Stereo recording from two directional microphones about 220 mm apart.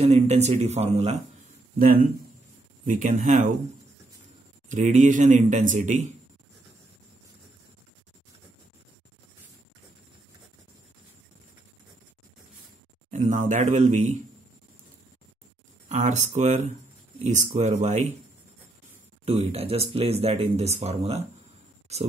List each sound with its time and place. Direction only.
0.0 s speech: 30° right (ahead or behind)
2.8 s a man's voice: 35° right (ahead or behind)
4.6 s a man's voice: 35° right (ahead or behind)
13.1 s a man's voice: 35° right (ahead or behind)
15.9 s a man's voice: 30° right (ahead or behind)
19.2 s speech: 25° right (ahead or behind)